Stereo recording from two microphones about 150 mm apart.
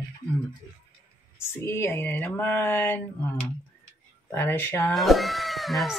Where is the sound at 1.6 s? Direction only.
15° left (ahead or behind).